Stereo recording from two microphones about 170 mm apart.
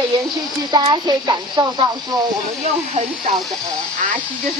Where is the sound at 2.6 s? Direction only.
45° right (ahead or behind).